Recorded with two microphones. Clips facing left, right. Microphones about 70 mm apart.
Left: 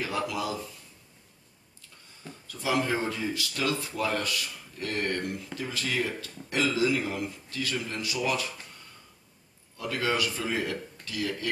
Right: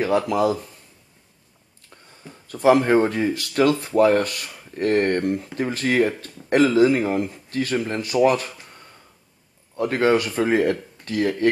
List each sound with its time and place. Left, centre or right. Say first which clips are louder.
0.0 s speech: right 11 dB; right
2.4 s speech: right 12 dB; right
9.8 s speech: right 10 dB; right